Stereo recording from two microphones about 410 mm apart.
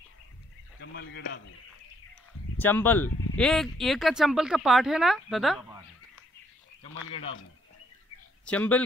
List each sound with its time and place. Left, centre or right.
0.7 s speech: left
2.6 s speech: centre
8.5 s speech: centre